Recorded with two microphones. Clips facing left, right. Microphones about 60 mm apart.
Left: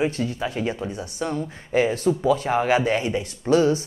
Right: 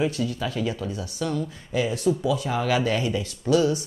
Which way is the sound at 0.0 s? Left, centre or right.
Left.